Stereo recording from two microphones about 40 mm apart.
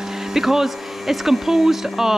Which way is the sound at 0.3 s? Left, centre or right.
Centre.